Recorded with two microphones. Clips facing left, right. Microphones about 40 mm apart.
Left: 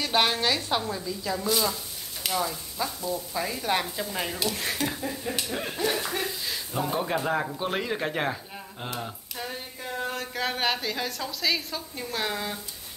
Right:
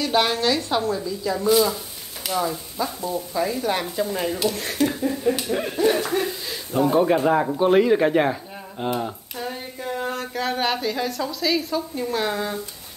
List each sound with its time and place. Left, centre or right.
0.0 s a woman's voice: centre
0.8 s speech: centre
2.8 s speech: right
3.3 s speech: centre